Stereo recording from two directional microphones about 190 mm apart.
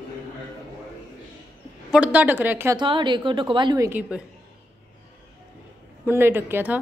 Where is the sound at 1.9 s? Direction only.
5° right (ahead or behind).